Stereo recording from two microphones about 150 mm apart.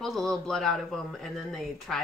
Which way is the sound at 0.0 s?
Centre (ahead or behind).